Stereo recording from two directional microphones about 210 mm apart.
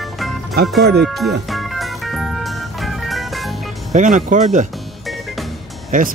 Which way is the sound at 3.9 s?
35° right (ahead or behind).